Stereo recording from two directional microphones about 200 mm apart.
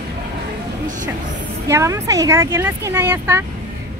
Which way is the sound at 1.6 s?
15° right (ahead or behind).